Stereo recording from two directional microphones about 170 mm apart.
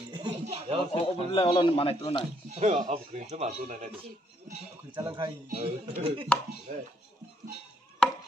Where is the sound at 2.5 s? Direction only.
35° right (ahead or behind).